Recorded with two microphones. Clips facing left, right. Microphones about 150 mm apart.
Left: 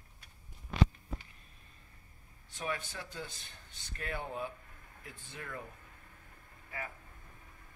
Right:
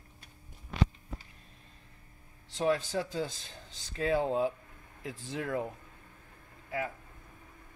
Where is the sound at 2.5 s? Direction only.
90° right.